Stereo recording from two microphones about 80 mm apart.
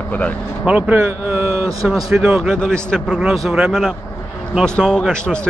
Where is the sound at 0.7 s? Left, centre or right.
Centre.